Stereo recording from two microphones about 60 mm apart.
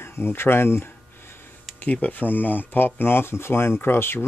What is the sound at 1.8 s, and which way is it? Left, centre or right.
Speech, left.